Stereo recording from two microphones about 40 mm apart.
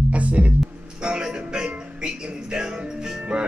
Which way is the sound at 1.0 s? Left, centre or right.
Centre.